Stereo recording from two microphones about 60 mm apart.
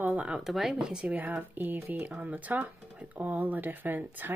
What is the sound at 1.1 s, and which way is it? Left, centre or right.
Speech, right.